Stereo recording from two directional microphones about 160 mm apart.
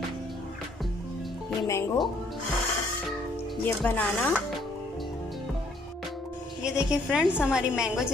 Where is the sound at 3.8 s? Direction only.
10° left (ahead or behind).